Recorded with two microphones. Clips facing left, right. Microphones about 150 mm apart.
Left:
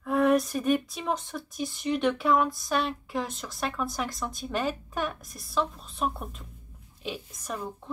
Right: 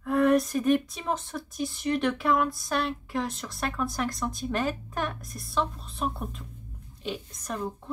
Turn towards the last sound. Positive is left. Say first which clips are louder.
# right 1 dB
turn(degrees=0)  # may be behind; listen again after turning